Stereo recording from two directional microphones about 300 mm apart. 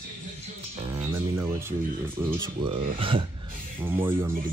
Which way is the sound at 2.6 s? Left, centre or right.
Centre.